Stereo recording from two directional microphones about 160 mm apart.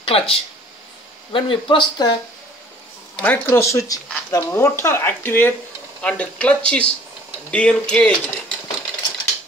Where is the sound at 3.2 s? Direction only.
15° left (ahead or behind).